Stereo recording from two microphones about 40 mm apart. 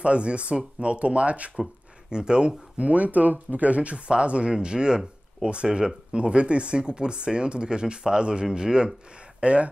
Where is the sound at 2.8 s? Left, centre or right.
Right.